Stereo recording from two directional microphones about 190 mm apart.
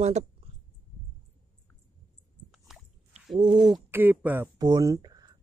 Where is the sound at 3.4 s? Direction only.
25° right (ahead or behind).